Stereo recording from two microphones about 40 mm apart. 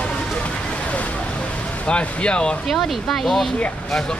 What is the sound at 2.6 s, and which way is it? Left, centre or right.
Speech, centre.